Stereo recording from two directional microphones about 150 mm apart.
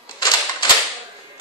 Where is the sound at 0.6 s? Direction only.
30° left (ahead or behind).